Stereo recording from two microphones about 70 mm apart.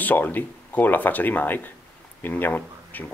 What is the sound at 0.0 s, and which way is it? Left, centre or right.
Speech, left.